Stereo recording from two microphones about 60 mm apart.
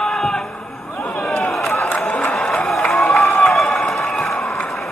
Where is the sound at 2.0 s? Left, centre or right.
Centre.